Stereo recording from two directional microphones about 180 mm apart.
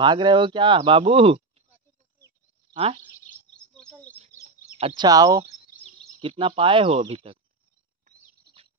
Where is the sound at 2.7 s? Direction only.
30° right (ahead or behind).